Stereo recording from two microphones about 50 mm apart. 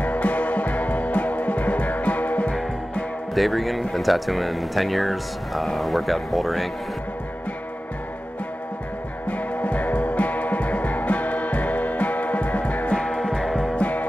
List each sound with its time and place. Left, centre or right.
0.0 s music: left
3.3 s speech: centre
9.3 s music: left
12.9 s music: centre
13.7 s music: left